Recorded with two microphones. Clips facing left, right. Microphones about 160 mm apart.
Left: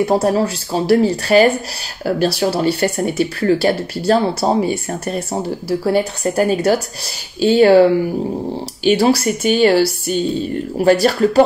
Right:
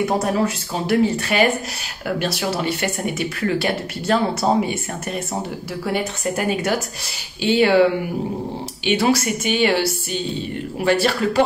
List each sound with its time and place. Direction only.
0.2 s speech: 35° left (ahead or behind)